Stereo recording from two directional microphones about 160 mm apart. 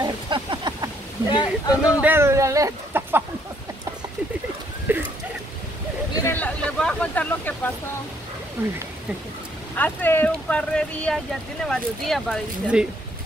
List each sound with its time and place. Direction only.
0.0 s a sound: 30° right (ahead or behind)
1.3 s speech: 25° left (ahead or behind)
2.0 s speech: 10° right (ahead or behind)
4.9 s a sound: 10° right (ahead or behind)
6.1 s speech: 15° left (ahead or behind)
8.6 s speech: 10° right (ahead or behind)
9.8 s speech: 10° left (ahead or behind)